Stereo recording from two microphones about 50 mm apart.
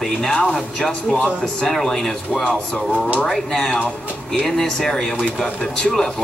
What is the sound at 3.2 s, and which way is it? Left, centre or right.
Speech, centre.